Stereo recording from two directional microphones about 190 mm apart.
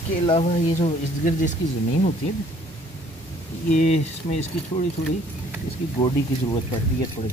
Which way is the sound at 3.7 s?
40° left (ahead or behind).